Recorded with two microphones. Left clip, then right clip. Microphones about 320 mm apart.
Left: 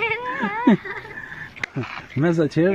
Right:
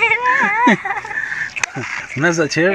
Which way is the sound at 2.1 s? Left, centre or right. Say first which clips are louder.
Right 4 dB; right.